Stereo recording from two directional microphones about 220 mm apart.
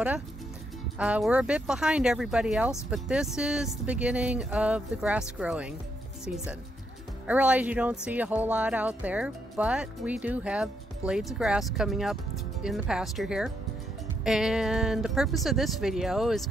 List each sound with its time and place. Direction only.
0.9 s speech: 5° right (ahead or behind)